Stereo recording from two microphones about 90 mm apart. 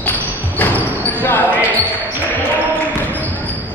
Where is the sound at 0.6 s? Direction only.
20° left (ahead or behind).